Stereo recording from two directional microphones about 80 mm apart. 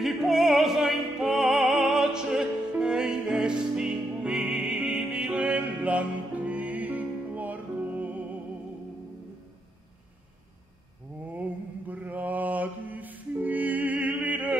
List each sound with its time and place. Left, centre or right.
0.0 s music: centre
11.9 s music: right